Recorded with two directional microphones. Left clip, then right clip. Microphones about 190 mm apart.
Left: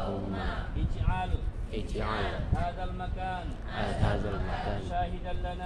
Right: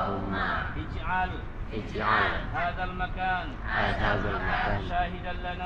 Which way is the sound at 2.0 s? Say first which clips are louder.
Right 9 dB; 15° left (ahead or behind).